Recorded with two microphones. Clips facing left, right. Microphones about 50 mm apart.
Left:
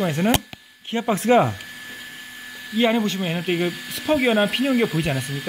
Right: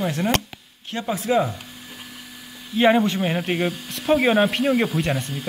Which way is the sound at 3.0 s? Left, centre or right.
Centre.